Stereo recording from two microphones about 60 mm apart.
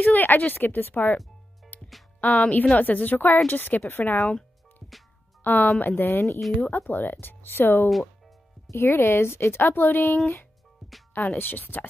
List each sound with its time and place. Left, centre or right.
0.0 s speech: left
1.7 s music: left
2.1 s a woman's voice: left
5.4 s speech: left
6.7 s speech: left
8.6 s music: left
8.9 s speech: left
10.8 s music: centre
11.1 s speech: left